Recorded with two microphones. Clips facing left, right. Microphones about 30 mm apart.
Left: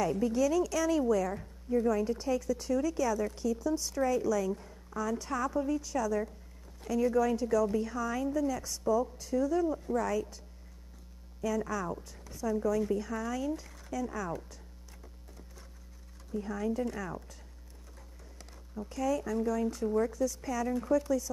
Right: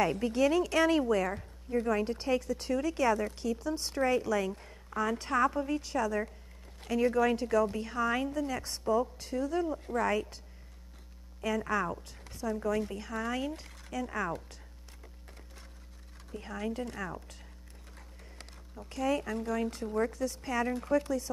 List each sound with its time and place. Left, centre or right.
0.0 s speech: right
11.4 s speech: right
16.3 s speech: right
18.9 s speech: right